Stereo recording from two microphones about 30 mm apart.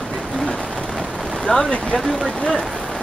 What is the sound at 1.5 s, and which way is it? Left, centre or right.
Speech, left.